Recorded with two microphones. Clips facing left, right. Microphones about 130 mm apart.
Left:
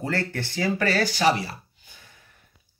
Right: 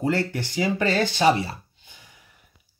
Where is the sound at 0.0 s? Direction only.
15° right (ahead or behind).